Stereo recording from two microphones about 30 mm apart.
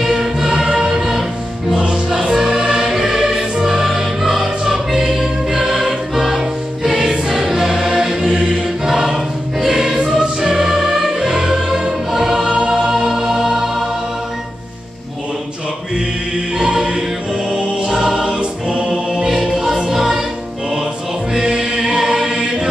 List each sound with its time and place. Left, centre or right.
0.1 s music: centre
5.6 s choir: centre
9.9 s choir: right
10.4 s music: centre
16.5 s music: centre
17.8 s music: centre
19.5 s music: centre
21.5 s choir: right